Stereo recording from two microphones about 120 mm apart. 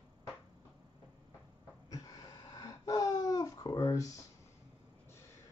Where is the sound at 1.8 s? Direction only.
30° left (ahead or behind).